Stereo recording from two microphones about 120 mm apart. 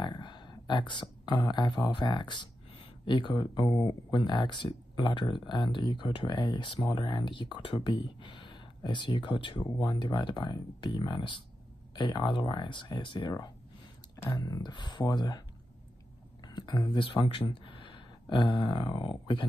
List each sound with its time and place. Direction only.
0.0 s speech: 40° left (ahead or behind)
16.4 s speech: 35° left (ahead or behind)